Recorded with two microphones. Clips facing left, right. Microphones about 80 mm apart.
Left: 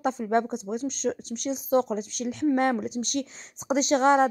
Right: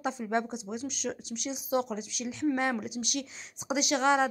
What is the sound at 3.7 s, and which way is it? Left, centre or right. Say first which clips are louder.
Speech: left 5 dB; left.